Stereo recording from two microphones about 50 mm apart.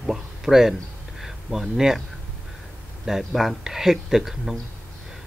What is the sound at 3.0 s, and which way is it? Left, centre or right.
Speech, centre.